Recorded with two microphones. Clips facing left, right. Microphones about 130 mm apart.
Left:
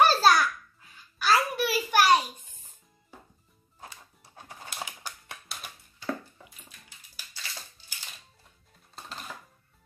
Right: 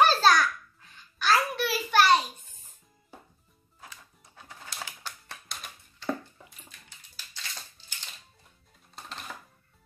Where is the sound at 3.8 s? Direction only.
30° left (ahead or behind).